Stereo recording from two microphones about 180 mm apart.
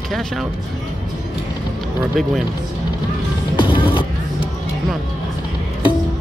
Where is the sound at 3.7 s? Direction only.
30° left (ahead or behind).